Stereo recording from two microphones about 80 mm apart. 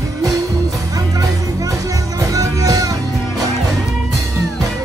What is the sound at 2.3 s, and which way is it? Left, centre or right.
Music, right.